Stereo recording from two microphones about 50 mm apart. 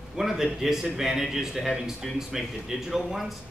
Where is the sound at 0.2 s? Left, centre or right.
Centre.